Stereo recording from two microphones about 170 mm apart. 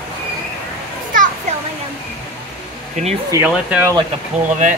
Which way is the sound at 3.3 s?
10° right (ahead or behind).